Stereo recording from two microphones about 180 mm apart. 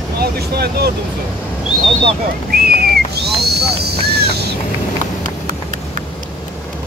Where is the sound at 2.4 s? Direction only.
60° right (ahead or behind).